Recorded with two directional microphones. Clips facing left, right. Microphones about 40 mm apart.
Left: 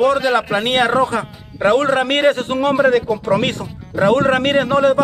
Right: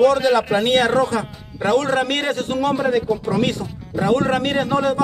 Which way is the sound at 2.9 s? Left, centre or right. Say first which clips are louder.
Left 4 dB; left.